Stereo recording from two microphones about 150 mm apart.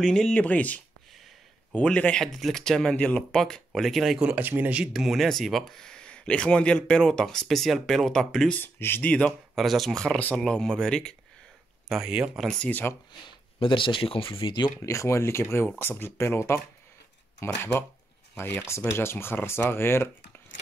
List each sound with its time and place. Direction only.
0.0 s speech: 5° left (ahead or behind)
11.9 s speech: 5° right (ahead or behind)
13.6 s speech: 35° left (ahead or behind)
14.8 s speech: 20° left (ahead or behind)